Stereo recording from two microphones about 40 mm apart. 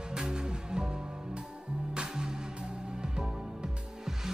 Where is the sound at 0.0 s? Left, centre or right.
Centre.